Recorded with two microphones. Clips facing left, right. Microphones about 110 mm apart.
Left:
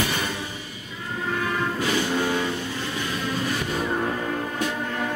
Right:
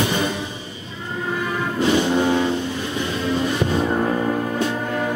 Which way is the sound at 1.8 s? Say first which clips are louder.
Right 9 dB; 20° right (ahead or behind).